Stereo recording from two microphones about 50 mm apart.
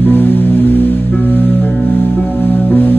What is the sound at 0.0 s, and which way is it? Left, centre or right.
Music, left.